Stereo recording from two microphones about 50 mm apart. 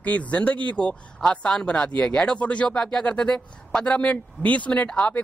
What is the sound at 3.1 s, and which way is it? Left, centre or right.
Speech, left.